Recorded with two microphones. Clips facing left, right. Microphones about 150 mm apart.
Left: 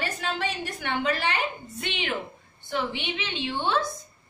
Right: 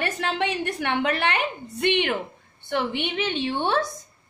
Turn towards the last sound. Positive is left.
turn(degrees=-55)  # may be behind; listen again after turning